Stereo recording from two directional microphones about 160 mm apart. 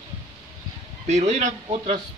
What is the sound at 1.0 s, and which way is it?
Speech, 45° right (ahead or behind).